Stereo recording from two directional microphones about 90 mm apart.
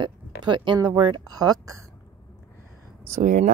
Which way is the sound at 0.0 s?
60° right (ahead or behind).